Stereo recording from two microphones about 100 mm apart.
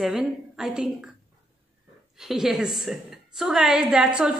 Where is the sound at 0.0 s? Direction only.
5° right (ahead or behind).